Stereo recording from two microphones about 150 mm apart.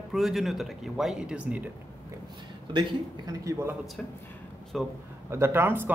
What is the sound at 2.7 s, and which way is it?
A man's voice, 30° right (ahead or behind).